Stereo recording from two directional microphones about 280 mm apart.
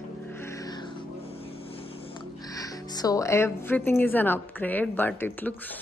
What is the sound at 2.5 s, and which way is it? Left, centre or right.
A woman's voice, centre.